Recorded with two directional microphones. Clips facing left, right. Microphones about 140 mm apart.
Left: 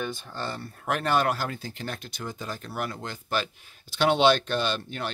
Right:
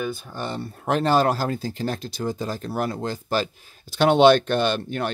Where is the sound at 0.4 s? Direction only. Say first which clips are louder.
Right 3 dB; 20° right (ahead or behind).